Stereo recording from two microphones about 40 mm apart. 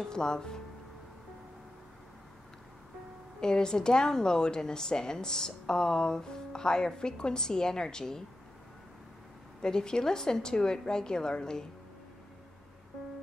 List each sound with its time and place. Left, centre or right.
0.1 s a woman's voice: centre
3.3 s a woman's voice: centre
9.6 s a woman's voice: centre